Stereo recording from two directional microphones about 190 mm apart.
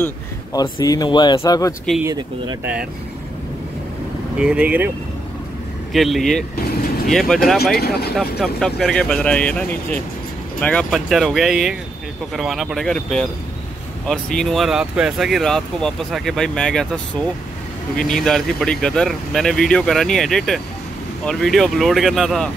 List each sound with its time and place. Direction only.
0.0 s speech: 20° left (ahead or behind)
2.0 s speech: 20° right (ahead or behind)
4.4 s speech: 5° right (ahead or behind)
5.9 s speech: centre (ahead or behind)
7.8 s speech: 55° left (ahead or behind)
8.2 s speech: centre (ahead or behind)